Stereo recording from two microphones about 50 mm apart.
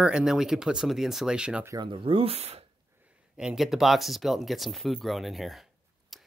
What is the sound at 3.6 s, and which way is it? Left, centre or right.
Speech, centre.